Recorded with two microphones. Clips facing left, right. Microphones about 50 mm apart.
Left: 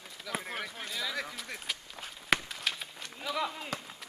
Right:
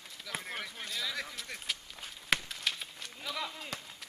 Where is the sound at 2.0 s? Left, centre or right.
Centre.